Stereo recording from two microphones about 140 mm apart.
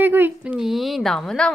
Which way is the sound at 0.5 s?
Centre (ahead or behind).